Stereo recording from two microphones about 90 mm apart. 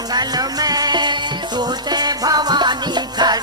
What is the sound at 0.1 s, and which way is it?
Music, 50° right (ahead or behind).